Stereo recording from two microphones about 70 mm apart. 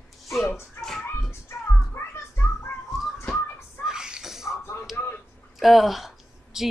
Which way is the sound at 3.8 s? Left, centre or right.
Centre.